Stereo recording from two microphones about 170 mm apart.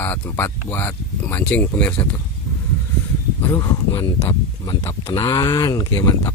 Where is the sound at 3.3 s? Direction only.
15° left (ahead or behind).